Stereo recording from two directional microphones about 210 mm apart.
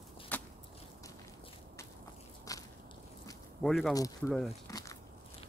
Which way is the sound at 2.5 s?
15° left (ahead or behind).